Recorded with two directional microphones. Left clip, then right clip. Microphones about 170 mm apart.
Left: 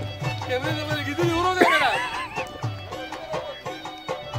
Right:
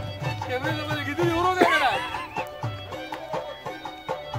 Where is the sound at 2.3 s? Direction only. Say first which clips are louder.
Even; 45° left (ahead or behind).